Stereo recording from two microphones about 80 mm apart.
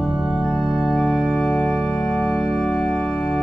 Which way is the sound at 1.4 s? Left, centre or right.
Centre.